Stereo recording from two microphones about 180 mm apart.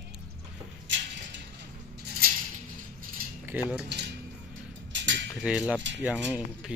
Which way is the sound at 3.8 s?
70° right (ahead or behind).